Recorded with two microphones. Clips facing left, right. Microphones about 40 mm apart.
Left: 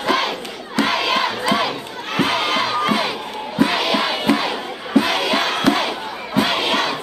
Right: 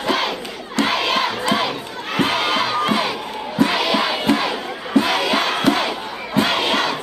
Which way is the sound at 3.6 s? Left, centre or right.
Centre.